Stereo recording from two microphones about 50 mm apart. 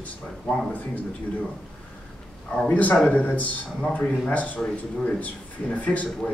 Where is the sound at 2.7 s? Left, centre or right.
Left.